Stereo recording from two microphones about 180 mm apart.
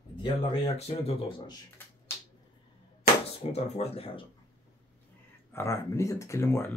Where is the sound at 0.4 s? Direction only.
35° left (ahead or behind).